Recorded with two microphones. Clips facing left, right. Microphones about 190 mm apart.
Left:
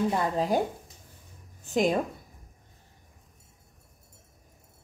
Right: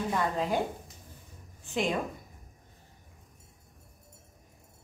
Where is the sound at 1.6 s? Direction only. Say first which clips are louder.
Left 5 dB; 40° left (ahead or behind).